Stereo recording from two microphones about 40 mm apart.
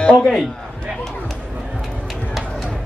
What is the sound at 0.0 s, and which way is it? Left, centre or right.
Speech, left.